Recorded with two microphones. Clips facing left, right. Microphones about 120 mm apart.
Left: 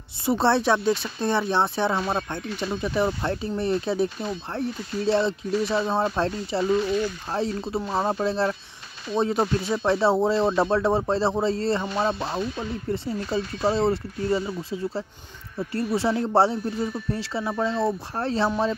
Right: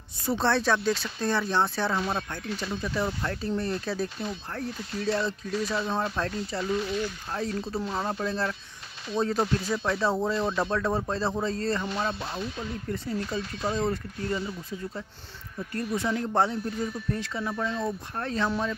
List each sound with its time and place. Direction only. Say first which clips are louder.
0.4 s speech: left 4 dB; 25° left (ahead or behind)